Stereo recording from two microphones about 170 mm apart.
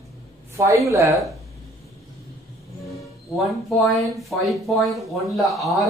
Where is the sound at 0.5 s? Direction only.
20° right (ahead or behind).